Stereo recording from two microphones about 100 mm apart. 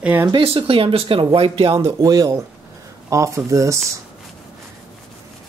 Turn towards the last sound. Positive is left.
turn(degrees=-30)  # may be behind; listen again after turning